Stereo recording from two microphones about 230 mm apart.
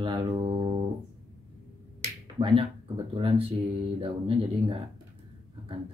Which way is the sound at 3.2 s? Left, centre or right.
Right.